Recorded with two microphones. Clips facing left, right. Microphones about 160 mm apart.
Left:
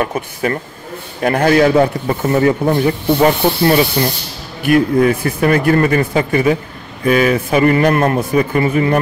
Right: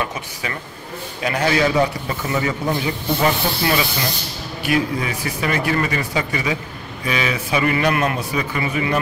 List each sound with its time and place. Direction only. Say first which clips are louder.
0.0 s speech: left 8 dB; 50° left (ahead or behind)
4.6 s speech: left 9 dB; 50° left (ahead or behind)